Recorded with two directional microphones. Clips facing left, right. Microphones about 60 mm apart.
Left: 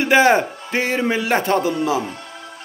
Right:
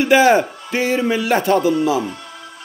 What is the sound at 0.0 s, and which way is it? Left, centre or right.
A man's voice, left.